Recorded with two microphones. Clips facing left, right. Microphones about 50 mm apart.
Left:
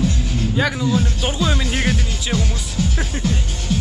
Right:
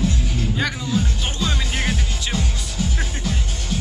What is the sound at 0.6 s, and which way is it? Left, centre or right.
Speech, centre.